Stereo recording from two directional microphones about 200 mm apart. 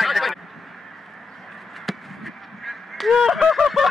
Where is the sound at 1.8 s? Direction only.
Centre (ahead or behind).